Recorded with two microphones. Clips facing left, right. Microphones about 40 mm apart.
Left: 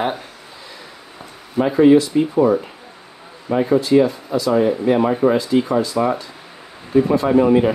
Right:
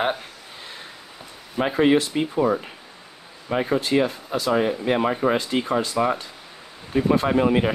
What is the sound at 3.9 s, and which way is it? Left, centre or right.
Speech, right.